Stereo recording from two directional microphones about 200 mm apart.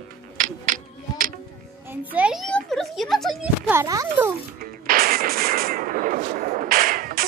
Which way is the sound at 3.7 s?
15° right (ahead or behind).